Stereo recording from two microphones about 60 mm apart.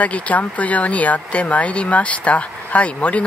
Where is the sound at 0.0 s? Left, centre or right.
Left.